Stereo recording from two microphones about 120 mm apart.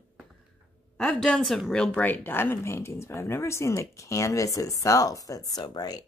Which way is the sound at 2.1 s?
20° left (ahead or behind).